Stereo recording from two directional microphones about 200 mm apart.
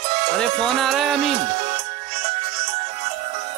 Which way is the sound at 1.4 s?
40° right (ahead or behind).